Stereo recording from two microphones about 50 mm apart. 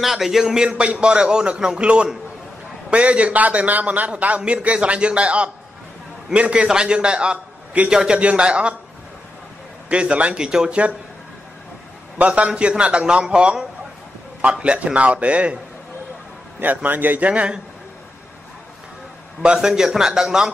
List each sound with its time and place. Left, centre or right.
0.0 s a man's voice: centre
0.7 s a man's voice: right
9.8 s a man's voice: right
12.2 s a man's voice: right
16.8 s speech: right
17.3 s a man's voice: right
19.5 s a man's voice: centre